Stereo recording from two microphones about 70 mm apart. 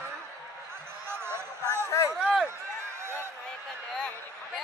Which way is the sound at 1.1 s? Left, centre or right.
Right.